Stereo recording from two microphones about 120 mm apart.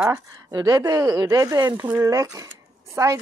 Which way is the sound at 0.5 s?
30° right (ahead or behind).